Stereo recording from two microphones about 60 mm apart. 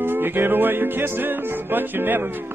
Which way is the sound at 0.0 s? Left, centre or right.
Right.